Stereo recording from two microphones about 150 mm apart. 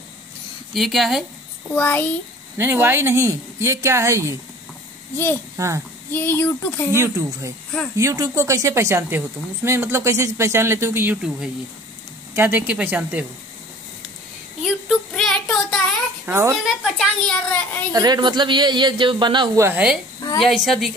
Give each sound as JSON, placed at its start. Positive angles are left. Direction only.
{"t": 0.7, "sound": "a woman's voice", "side_deg": 0}
{"t": 1.7, "sound": "speech", "side_deg": 10}
{"t": 2.5, "sound": "speech", "side_deg": -15}
{"t": 5.1, "sound": "speech", "side_deg": 15}
{"t": 7.0, "sound": "speech", "side_deg": -20}
{"t": 11.2, "sound": "a woman's voice", "side_deg": -5}
{"t": 14.6, "sound": "child singing", "side_deg": 0}
{"t": 16.3, "sound": "speech", "side_deg": -15}
{"t": 16.6, "sound": "a woman's voice", "side_deg": 0}
{"t": 17.9, "sound": "a man's voice", "side_deg": -25}
{"t": 19.6, "sound": "a woman's voice", "side_deg": -10}